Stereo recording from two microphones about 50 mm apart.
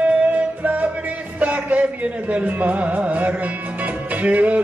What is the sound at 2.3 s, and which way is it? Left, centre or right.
Music, right.